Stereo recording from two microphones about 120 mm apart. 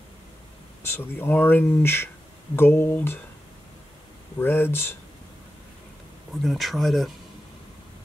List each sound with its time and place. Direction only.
0.8 s speech: 20° left (ahead or behind)
4.4 s speech: 20° left (ahead or behind)
6.4 s speech: centre (ahead or behind)